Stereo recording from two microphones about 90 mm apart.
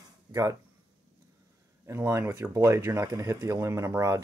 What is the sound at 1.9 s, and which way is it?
Speech, 30° right (ahead or behind).